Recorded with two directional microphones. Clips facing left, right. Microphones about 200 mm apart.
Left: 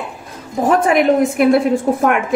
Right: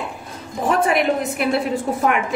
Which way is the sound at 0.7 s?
50° left (ahead or behind).